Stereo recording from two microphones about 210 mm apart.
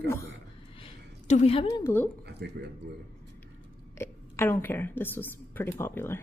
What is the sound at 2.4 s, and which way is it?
Speech, 50° right (ahead or behind).